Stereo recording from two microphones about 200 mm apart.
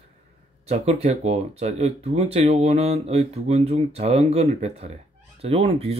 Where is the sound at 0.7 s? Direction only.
30° right (ahead or behind).